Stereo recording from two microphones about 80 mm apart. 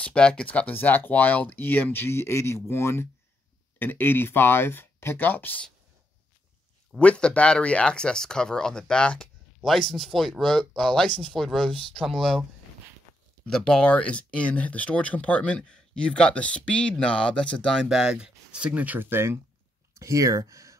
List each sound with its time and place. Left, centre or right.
0.0 s speech: centre
7.0 s speech: centre
13.5 s speech: centre
17.8 s speech: centre; by 19.4 s right
19.9 s speech: right